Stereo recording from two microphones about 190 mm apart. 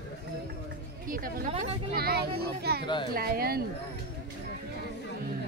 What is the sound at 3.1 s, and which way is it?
Speech, 55° right (ahead or behind).